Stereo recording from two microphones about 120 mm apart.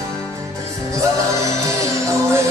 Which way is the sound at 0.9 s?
25° right (ahead or behind).